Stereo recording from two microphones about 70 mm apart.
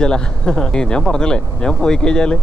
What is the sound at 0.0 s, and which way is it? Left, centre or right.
Speech, centre.